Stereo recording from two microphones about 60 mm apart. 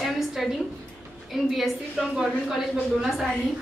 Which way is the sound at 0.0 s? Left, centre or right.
Centre.